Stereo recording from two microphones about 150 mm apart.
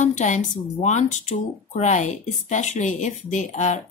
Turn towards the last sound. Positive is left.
turn(degrees=50)  # may be behind; listen again after turning